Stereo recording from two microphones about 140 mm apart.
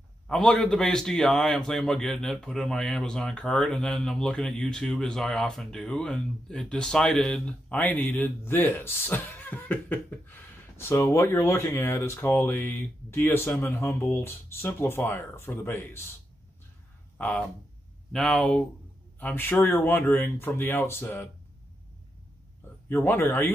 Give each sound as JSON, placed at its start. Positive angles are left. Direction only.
{"t": 0.3, "sound": "a man's voice", "side_deg": 5}
{"t": 18.1, "sound": "a man's voice", "side_deg": 5}
{"t": 22.8, "sound": "a man's voice", "side_deg": 15}